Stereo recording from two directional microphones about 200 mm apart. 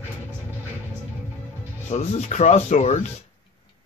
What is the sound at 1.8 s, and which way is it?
Speech, 35° left (ahead or behind).